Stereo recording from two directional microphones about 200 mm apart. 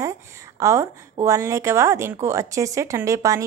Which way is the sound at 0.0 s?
15° right (ahead or behind).